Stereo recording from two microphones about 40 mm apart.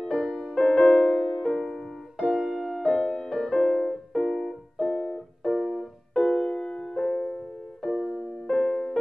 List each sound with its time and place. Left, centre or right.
0.2 s music: centre
0.6 s music: left
1.2 s music: centre
1.7 s music: left
2.3 s music: centre
3.5 s piano: left
5.4 s keyboard: centre
6.2 s music: left